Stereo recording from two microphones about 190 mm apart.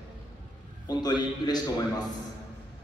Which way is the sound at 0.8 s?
20° left (ahead or behind).